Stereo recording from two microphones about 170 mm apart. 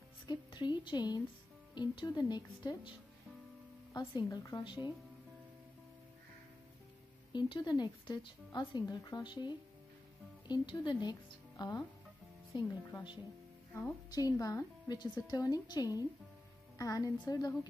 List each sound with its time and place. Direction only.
0.3 s a woman's voice: 25° left (ahead or behind)
3.9 s a woman's voice: 25° left (ahead or behind)
7.3 s a woman's voice: 25° left (ahead or behind)
14.1 s a woman's voice: 20° left (ahead or behind)